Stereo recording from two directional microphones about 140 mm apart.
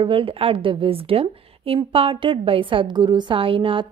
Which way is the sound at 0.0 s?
40° right (ahead or behind).